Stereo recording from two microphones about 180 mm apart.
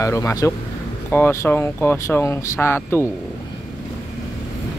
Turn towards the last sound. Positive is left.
turn(degrees=15)  # may be behind; listen again after turning